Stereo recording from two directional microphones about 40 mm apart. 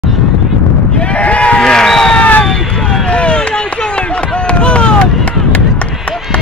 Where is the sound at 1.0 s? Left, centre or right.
Left.